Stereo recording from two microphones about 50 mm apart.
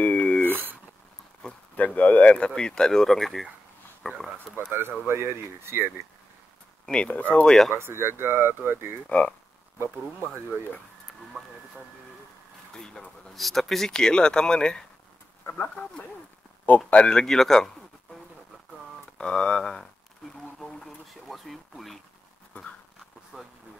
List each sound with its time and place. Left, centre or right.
0.0 s a sound: left
0.5 s a sound: right
1.8 s speech: left
2.3 s speech: centre
4.0 s a sound: left
4.6 s speech: right
6.9 s speech: left
7.4 s speech: centre
7.7 s speech: right
11.4 s speech: centre
12.7 s speech: centre
15.4 s speech: left
17.0 s speech: centre
19.1 s speech: centre